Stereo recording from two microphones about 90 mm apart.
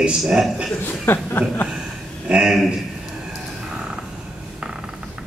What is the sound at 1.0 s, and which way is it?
Chuckle, 25° left (ahead or behind).